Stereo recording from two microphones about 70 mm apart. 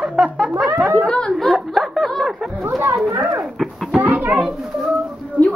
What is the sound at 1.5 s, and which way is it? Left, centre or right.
Speech, centre.